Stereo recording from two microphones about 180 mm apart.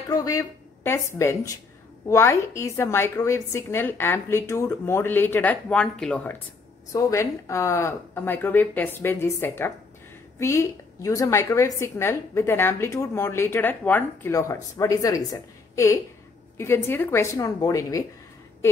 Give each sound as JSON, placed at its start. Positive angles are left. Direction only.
{"t": 0.1, "sound": "a woman's voice", "side_deg": 20}
{"t": 6.9, "sound": "a woman's voice", "side_deg": 20}